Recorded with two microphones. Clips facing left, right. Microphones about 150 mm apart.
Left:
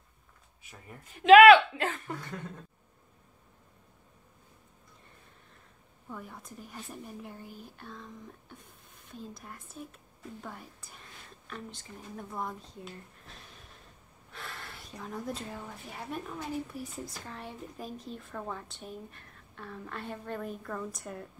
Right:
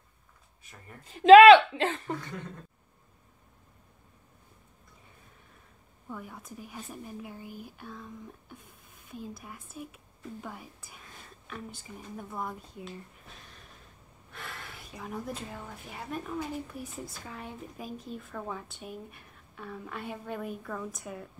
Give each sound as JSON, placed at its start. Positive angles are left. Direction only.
{"t": 1.0, "sound": "speech", "side_deg": -30}
{"t": 6.0, "sound": "a woman's voice", "side_deg": 0}